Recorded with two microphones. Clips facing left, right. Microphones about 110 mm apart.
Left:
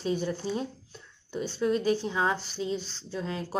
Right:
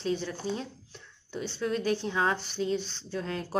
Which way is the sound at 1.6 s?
10° left (ahead or behind).